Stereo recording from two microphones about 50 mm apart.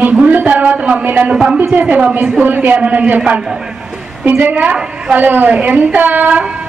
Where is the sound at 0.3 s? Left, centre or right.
Right.